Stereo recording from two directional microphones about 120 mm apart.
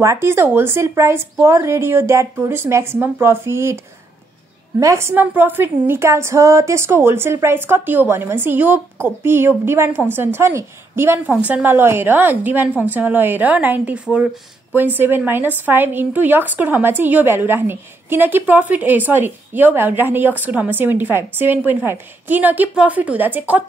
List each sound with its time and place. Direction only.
0.0 s a woman's voice: 25° right (ahead or behind)